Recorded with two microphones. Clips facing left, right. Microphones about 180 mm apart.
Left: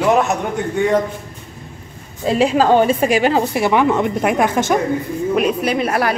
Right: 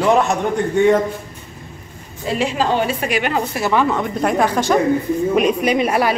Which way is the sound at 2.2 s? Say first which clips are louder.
Left 5 dB; 40° left (ahead or behind).